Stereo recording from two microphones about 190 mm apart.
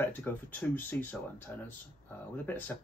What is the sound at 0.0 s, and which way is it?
Speech, 10° left (ahead or behind).